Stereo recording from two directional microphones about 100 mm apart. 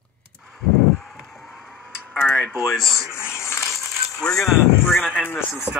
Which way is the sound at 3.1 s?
25° left (ahead or behind).